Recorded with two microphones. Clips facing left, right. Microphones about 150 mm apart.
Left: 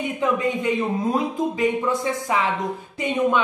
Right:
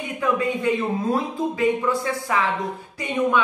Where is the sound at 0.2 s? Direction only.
20° left (ahead or behind).